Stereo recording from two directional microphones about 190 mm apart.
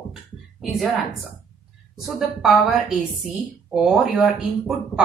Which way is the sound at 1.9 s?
Centre (ahead or behind).